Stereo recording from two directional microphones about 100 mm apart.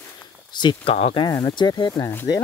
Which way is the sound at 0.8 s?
80° left.